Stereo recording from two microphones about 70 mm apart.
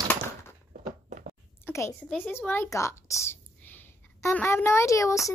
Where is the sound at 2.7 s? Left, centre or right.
Left.